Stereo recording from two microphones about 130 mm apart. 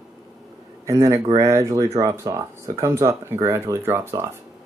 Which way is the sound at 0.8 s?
25° right (ahead or behind).